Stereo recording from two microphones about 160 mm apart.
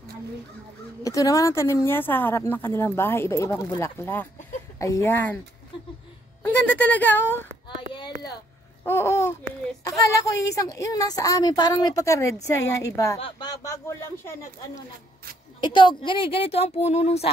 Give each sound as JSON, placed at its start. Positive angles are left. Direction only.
{"t": 1.0, "sound": "speech", "side_deg": 20}
{"t": 6.8, "sound": "speech", "side_deg": 10}
{"t": 7.9, "sound": "a sound", "side_deg": 30}
{"t": 8.8, "sound": "a woman's voice", "side_deg": 15}
{"t": 15.6, "sound": "speech", "side_deg": 30}